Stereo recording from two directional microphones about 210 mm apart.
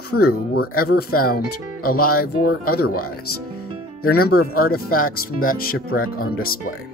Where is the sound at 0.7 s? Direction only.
45° left (ahead or behind).